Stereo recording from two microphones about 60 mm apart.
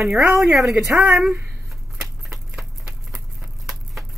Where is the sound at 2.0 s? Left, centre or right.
Centre.